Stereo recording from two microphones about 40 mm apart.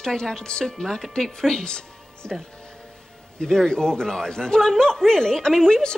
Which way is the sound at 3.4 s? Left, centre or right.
Centre.